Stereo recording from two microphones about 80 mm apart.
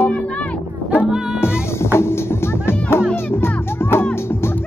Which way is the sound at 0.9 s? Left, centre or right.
Centre.